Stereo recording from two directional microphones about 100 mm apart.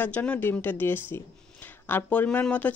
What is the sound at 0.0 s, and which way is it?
Speech, 15° left (ahead or behind).